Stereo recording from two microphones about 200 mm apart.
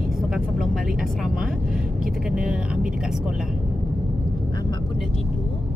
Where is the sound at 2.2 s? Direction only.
5° right (ahead or behind).